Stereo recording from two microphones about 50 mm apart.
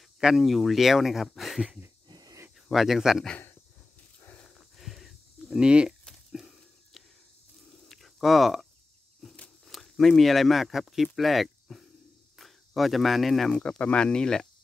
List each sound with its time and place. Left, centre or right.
0.4 s speech: centre
2.7 s speech: centre
4.6 s a sound: centre
5.7 s speech: centre
7.9 s a sound: centre
9.7 s speech: centre
13.6 s speech: left